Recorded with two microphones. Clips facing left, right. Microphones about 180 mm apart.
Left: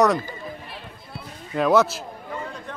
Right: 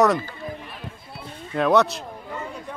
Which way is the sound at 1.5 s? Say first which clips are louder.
Even; centre (ahead or behind).